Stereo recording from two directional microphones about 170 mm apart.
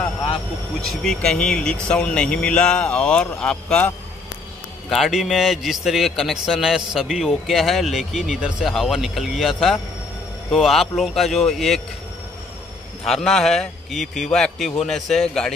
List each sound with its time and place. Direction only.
0.8 s a man's voice: 5° left (ahead or behind)
13.0 s a man's voice: centre (ahead or behind)